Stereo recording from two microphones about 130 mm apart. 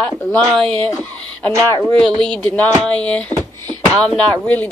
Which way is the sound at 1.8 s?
5° left (ahead or behind).